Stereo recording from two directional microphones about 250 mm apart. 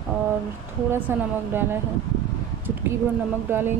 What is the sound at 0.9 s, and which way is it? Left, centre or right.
Speech, centre.